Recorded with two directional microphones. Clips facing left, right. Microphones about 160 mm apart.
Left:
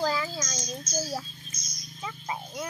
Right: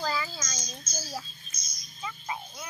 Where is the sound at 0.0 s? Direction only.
15° left (ahead or behind).